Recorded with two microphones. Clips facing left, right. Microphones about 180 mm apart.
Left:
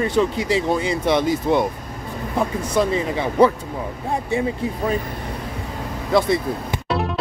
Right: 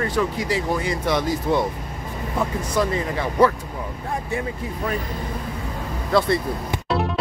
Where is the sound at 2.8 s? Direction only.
20° left (ahead or behind).